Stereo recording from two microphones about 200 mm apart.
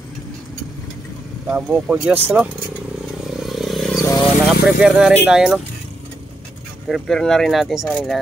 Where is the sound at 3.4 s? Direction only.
Centre (ahead or behind).